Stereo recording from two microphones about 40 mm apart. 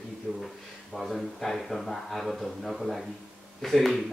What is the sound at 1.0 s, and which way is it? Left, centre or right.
A man's voice, centre.